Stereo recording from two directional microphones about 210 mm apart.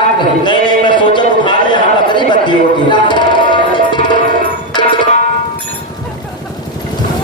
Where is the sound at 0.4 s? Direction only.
20° left (ahead or behind).